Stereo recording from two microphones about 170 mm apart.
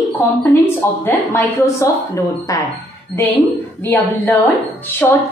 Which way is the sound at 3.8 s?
10° left (ahead or behind).